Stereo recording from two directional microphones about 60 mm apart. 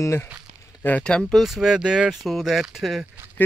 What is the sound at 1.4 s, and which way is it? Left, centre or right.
Speech, centre.